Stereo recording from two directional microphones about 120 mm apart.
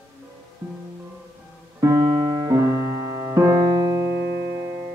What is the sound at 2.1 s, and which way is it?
Music, 40° right (ahead or behind).